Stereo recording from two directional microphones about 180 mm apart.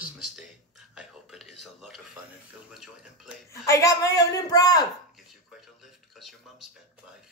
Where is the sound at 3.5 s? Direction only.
15° left (ahead or behind).